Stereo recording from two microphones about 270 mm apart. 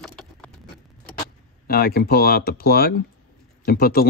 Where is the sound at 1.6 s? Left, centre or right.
Left.